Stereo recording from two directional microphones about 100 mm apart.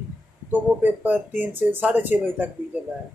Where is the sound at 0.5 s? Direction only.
15° right (ahead or behind).